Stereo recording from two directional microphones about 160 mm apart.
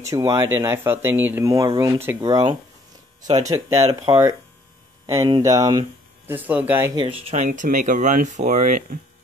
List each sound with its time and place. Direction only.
0.0 s speech: 20° right (ahead or behind)
5.4 s speech: 20° right (ahead or behind)
6.2 s speech: 10° right (ahead or behind)
7.0 s speech: 35° right (ahead or behind)
7.4 s speech: 55° right (ahead or behind)